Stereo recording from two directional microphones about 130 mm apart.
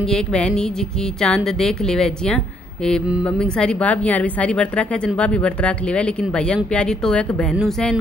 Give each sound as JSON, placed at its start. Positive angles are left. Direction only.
{"t": 0.0, "sound": "a woman's voice", "side_deg": 5}